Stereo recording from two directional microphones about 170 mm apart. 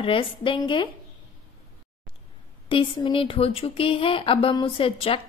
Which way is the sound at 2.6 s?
30° left (ahead or behind).